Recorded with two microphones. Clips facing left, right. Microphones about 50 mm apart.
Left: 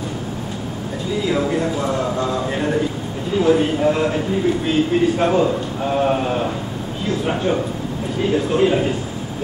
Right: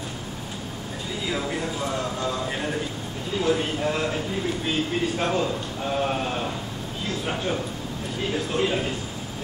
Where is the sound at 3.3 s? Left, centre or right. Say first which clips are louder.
Left 8 dB; centre.